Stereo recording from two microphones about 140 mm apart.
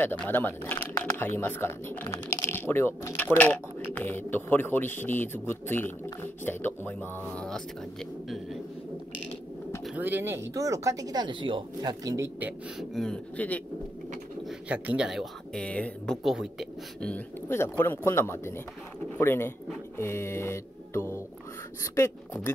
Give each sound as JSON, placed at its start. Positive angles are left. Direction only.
{"t": 0.3, "sound": "speech", "side_deg": 15}
{"t": 9.9, "sound": "speech", "side_deg": -15}
{"t": 12.4, "sound": "speech", "side_deg": -10}
{"t": 12.9, "sound": "speech", "side_deg": 5}
{"t": 14.7, "sound": "speech", "side_deg": -10}
{"t": 17.1, "sound": "speech", "side_deg": 15}